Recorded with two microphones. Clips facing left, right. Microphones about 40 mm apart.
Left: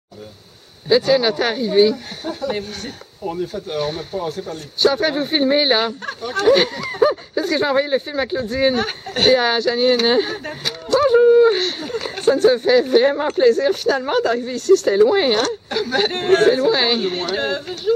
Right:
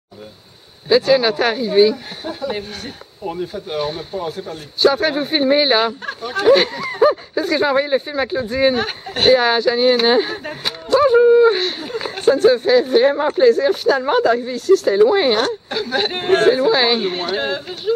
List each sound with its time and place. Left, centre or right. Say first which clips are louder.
0.8 s speech: right 1 dB; centre
10.6 s music: right 2 dB; centre
11.1 s speech: even; centre